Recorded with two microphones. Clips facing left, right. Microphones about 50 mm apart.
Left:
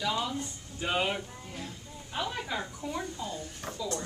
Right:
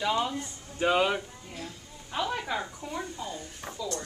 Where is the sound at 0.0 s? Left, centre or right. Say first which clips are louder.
Right 4 dB; right.